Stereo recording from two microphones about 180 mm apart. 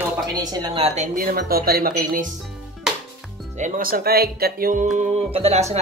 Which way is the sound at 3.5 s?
45° right (ahead or behind).